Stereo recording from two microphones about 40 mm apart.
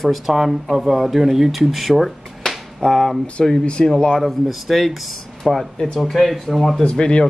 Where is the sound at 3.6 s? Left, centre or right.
Left.